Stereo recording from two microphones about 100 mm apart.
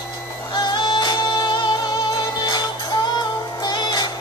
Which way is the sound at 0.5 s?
45° left (ahead or behind).